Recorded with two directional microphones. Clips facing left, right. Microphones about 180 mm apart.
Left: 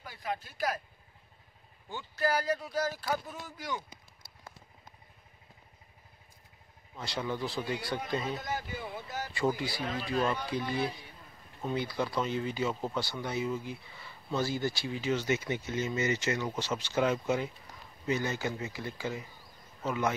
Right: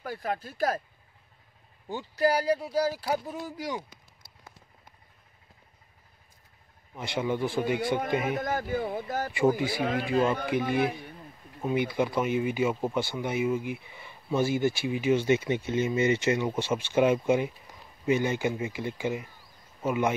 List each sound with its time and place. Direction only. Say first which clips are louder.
0.0 s speech: right 5 dB; 50° right (ahead or behind)
1.9 s speech: right 6 dB; 35° right (ahead or behind)
7.0 s speech: right 6 dB; 20° right (ahead or behind)
8.4 s speech: right 8 dB; 50° right (ahead or behind)
9.9 s speech: right 5 dB; 15° right (ahead or behind)
11.6 s speech: right 6 dB; 15° right (ahead or behind)
15.2 s speech: right 6 dB; 25° right (ahead or behind)
16.5 s speech: right 6 dB; 10° right (ahead or behind)